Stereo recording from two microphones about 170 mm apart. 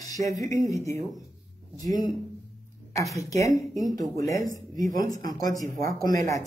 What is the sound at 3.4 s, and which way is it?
Speech, 20° left (ahead or behind).